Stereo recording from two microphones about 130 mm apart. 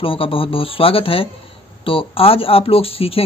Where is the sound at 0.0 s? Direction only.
45° left (ahead or behind).